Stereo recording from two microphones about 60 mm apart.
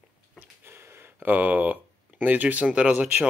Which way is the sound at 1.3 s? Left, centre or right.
Right.